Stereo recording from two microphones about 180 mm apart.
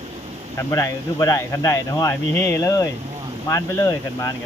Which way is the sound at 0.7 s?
20° left (ahead or behind).